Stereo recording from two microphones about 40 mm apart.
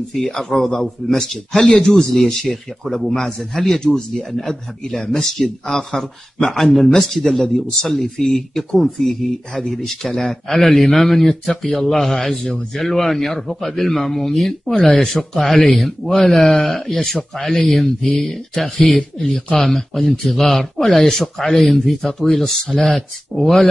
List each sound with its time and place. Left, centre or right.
0.3 s a man's voice: centre
14.8 s a man's voice: centre